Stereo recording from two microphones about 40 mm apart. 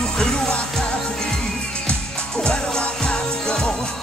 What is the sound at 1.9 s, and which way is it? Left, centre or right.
Music, centre.